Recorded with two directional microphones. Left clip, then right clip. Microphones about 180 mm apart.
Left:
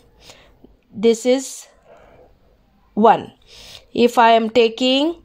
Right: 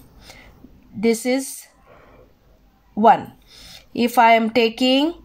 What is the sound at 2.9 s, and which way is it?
Speech, 30° left (ahead or behind).